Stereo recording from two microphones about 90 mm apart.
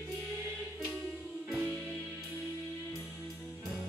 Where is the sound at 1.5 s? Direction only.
Centre (ahead or behind).